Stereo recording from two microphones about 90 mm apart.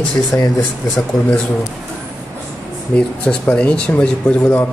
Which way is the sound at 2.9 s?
10° left (ahead or behind).